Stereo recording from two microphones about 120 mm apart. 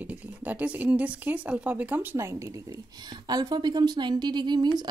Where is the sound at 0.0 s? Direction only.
15° right (ahead or behind).